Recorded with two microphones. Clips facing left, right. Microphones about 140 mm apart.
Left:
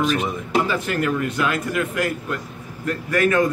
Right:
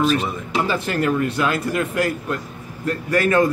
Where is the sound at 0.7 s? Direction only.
30° right (ahead or behind).